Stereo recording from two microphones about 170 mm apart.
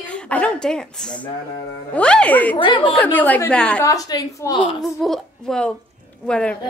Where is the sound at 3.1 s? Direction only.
10° left (ahead or behind).